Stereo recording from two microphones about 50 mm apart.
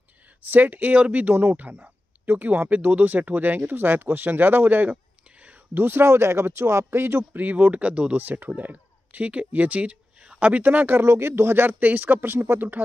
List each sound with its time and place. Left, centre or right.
0.5 s speech: right
5.8 s speech: right
7.3 s speech: right
8.2 s speech: right
11.0 s speech: right
11.8 s speech: right